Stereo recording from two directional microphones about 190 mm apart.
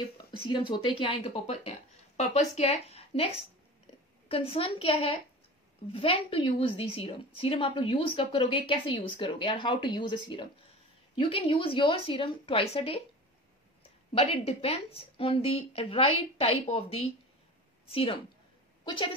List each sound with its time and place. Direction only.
0.5 s a woman's voice: 25° left (ahead or behind)
14.1 s a woman's voice: 30° left (ahead or behind)